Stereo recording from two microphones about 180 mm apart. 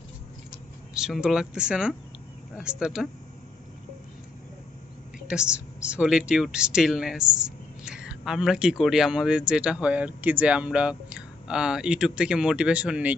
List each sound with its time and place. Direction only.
0.9 s speech: 5° right (ahead or behind)
5.3 s speech: 5° right (ahead or behind)